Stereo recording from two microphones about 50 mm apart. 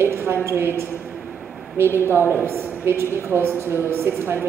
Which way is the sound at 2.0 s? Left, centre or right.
Right.